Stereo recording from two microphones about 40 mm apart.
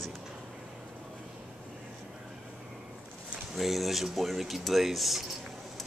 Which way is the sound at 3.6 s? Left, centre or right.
Centre.